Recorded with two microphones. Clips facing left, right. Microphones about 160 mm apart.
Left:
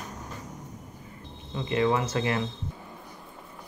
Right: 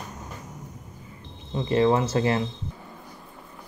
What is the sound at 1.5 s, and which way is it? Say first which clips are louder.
Speech: right 4 dB; 35° right (ahead or behind).